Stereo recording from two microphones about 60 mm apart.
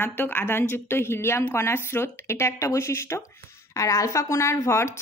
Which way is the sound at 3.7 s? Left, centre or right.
Left.